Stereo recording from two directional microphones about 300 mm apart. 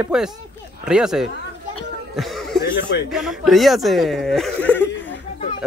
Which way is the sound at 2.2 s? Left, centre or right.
Centre.